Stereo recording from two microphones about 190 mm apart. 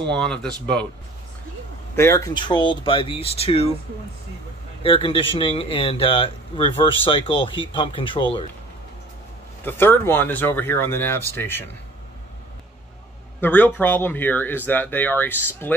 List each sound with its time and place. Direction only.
0.1 s speech: 5° left (ahead or behind)
2.0 s speech: 15° left (ahead or behind); by 3.7 s 30° left (ahead or behind)
4.8 s speech: 25° left (ahead or behind)
9.7 s speech: 10° left (ahead or behind)
13.4 s speech: 10° left (ahead or behind)